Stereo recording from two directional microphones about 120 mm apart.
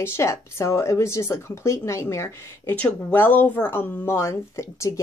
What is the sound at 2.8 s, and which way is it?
A woman's voice, 10° left (ahead or behind).